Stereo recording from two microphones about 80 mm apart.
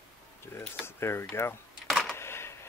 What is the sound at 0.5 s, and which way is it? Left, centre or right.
Speech, left.